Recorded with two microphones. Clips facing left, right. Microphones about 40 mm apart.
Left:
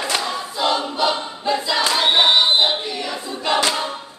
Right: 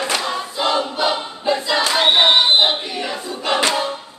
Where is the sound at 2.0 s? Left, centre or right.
Right.